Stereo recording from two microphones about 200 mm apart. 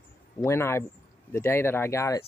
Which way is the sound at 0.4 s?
10° left (ahead or behind).